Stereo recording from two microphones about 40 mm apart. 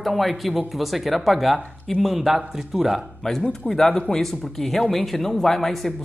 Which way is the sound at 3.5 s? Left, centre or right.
Centre.